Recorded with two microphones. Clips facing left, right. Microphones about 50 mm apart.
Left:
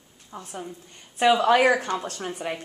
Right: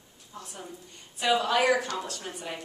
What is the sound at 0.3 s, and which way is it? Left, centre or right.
A woman's voice, left.